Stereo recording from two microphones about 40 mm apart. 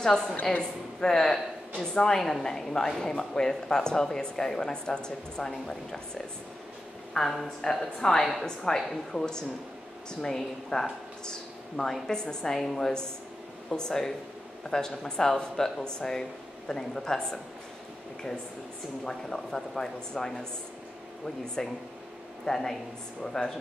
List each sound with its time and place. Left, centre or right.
0.0 s speech: centre
0.5 s a woman's voice: left
1.1 s speech: centre
7.2 s a woman's voice: centre
7.8 s speech: centre
19.0 s speech: centre
21.6 s a woman's voice: centre